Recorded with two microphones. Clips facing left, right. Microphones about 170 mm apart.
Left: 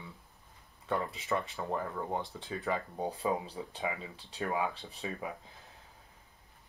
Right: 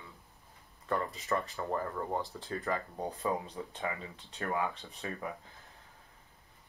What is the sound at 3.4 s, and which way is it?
Speech, 35° left (ahead or behind).